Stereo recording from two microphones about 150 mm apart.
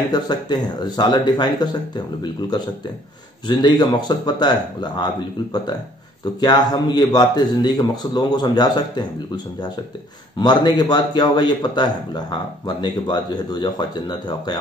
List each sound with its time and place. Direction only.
0.1 s a man's voice: 30° left (ahead or behind)
3.4 s a man's voice: 30° left (ahead or behind)
10.4 s a man's voice: 30° left (ahead or behind)